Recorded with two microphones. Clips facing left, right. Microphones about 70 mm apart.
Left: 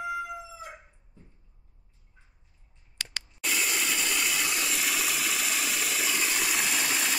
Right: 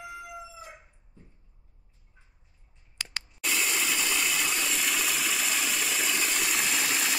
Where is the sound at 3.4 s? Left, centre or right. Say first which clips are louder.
Even; centre.